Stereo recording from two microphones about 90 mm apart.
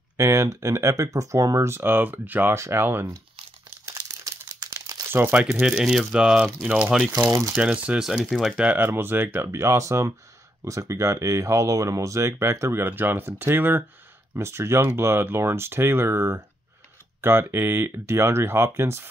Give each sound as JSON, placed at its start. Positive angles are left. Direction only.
{"t": 0.2, "sound": "speech", "side_deg": -35}
{"t": 3.8, "sound": "crumpling", "side_deg": -35}
{"t": 5.0, "sound": "crumpling", "side_deg": -25}
{"t": 5.3, "sound": "speech", "side_deg": -10}
{"t": 7.1, "sound": "speech", "side_deg": -40}
{"t": 7.5, "sound": "speech", "side_deg": -15}
{"t": 8.5, "sound": "speech", "side_deg": -20}